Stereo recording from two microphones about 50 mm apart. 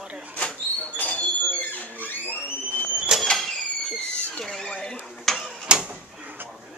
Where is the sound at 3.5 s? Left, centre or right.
Centre.